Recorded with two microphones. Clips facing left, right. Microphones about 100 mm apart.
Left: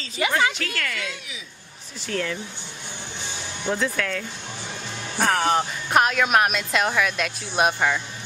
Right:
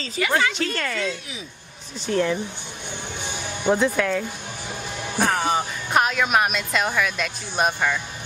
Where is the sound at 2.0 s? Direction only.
20° right (ahead or behind).